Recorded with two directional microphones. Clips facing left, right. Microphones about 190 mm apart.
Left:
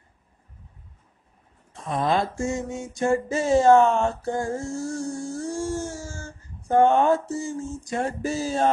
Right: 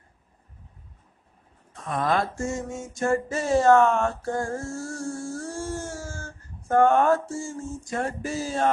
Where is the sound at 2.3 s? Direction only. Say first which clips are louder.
Left 2 dB; 15° left (ahead or behind).